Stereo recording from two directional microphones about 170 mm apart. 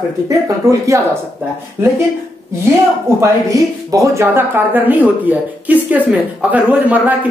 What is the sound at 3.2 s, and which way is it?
Speech, 20° right (ahead or behind).